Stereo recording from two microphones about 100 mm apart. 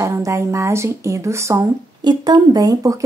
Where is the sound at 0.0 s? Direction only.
30° right (ahead or behind).